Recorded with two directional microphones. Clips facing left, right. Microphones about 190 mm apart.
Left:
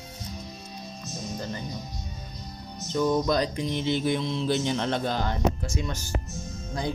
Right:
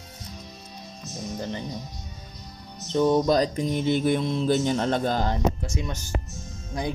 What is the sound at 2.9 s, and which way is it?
Mantra, 25° right (ahead or behind).